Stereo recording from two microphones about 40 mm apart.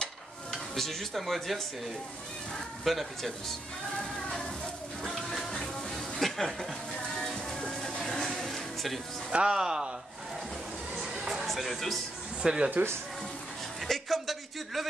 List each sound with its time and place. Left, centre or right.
0.7 s speech: centre
5.0 s music: centre
6.1 s chuckle: centre
7.2 s music: centre
8.0 s music: centre
9.3 s speech: right
11.0 s music: centre
12.4 s speech: centre
13.7 s a sound: centre